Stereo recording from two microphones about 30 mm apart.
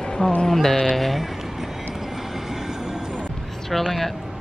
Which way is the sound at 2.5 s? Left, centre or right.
Centre.